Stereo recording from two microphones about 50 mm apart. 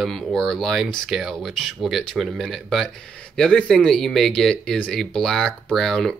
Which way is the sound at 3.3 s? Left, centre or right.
Centre.